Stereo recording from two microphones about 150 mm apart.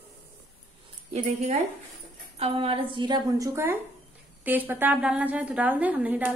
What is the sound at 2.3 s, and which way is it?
A woman's voice, 40° right (ahead or behind).